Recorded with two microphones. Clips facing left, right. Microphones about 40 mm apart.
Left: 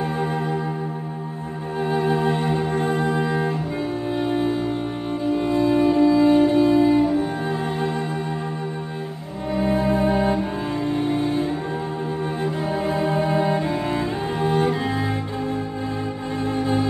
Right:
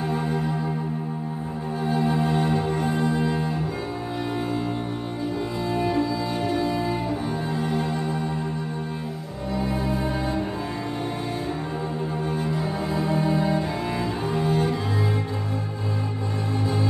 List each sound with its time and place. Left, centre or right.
1.8 s music: left
3.2 s cello: left
4.1 s music: left
7.5 s music: left
9.6 s cello: left